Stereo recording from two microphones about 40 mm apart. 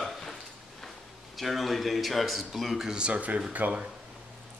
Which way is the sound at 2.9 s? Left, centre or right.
Right.